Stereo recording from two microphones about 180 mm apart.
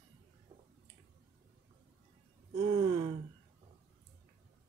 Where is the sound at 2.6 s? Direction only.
25° right (ahead or behind).